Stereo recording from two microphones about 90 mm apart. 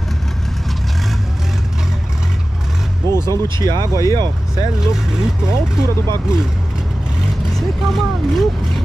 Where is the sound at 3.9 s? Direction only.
35° left (ahead or behind).